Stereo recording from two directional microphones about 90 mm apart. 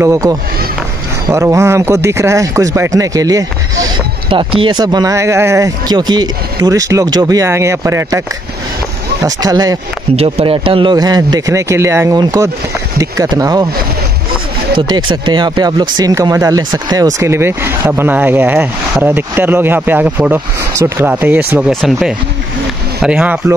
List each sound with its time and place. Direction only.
0.0 s a man's voice: 35° right (ahead or behind)
4.3 s speech: 75° right (ahead or behind)
4.7 s a man's voice: 50° right (ahead or behind); by 5.7 s 30° right (ahead or behind)
5.9 s a man's voice: 50° right (ahead or behind); by 8.2 s 35° right (ahead or behind)
9.2 s speech: 45° right (ahead or behind)
10.2 s speech: 90° right
11.0 s a man's voice: 45° right (ahead or behind); by 12.1 s 30° right (ahead or behind)
12.1 s speech: 45° right (ahead or behind)
14.8 s speech: 65° right (ahead or behind)
16.2 s a man's voice: 35° right (ahead or behind)
17.3 s speech: 25° right (ahead or behind)
23.0 s speech: 10° right (ahead or behind)